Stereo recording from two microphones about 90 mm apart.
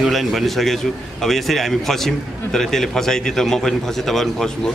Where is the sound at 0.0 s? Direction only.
Centre (ahead or behind).